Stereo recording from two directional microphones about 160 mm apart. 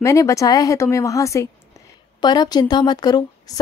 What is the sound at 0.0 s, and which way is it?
Speech, 20° left (ahead or behind).